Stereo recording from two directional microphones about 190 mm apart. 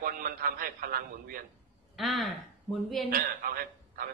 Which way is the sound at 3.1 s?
50° right (ahead or behind).